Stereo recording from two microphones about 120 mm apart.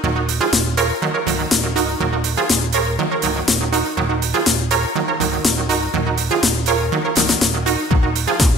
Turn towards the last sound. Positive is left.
turn(degrees=0)  # may be behind; listen again after turning